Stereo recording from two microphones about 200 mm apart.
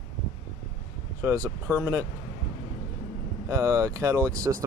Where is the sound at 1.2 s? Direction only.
15° right (ahead or behind).